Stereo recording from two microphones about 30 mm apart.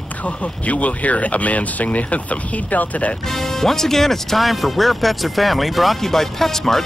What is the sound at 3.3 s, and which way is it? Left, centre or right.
Speech, centre.